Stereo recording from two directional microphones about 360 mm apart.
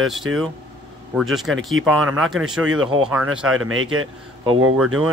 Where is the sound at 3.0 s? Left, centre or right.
Centre.